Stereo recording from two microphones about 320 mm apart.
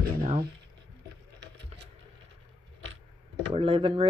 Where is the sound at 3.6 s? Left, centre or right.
Centre.